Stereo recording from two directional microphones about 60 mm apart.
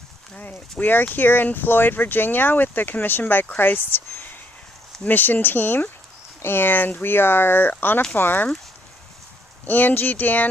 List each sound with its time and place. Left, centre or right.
0.3 s speech: left
9.7 s speech: left